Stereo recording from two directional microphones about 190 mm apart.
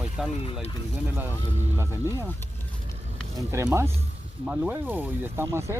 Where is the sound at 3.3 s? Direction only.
15° right (ahead or behind).